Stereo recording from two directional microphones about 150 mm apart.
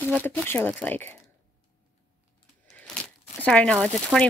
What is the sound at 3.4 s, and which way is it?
Speech, 10° left (ahead or behind).